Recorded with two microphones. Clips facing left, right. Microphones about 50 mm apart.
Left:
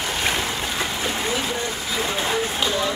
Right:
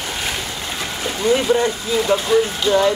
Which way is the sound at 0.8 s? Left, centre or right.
Centre.